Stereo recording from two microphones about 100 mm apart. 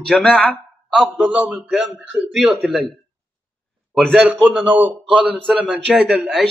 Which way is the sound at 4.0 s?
Centre (ahead or behind).